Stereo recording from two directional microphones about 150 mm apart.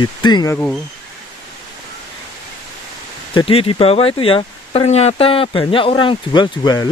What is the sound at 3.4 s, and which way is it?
Speech, 35° left (ahead or behind).